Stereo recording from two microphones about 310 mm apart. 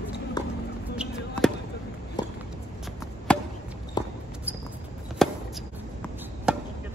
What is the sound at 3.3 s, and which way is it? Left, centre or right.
Chop, centre.